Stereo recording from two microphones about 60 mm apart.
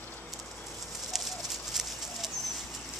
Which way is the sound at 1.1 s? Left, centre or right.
Centre.